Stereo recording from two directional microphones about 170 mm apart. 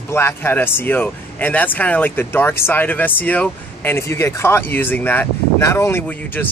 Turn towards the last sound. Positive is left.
turn(degrees=10)  # may be behind; listen again after turning